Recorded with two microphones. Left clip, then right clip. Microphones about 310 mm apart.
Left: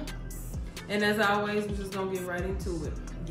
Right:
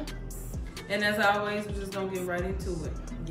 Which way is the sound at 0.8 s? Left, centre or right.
Centre.